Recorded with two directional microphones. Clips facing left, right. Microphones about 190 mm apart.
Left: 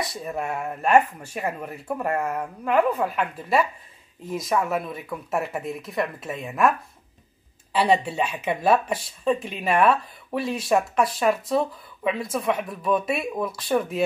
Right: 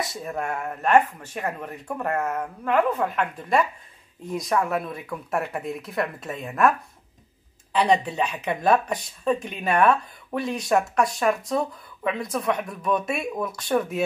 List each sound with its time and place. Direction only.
0.0 s speech: centre (ahead or behind)
7.7 s speech: 5° left (ahead or behind)